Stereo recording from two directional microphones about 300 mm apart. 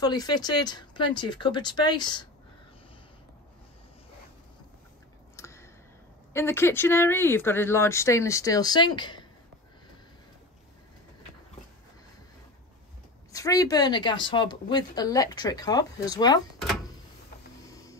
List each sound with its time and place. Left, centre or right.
0.0 s a woman's voice: centre
5.3 s a sound: centre
6.3 s a woman's voice: centre
13.3 s a woman's voice: centre